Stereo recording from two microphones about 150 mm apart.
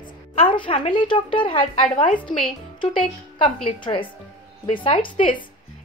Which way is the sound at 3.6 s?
35° left (ahead or behind).